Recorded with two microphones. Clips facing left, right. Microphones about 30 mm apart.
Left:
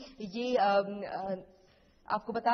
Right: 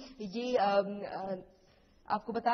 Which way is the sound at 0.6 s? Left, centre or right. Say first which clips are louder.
Left 2 dB; left.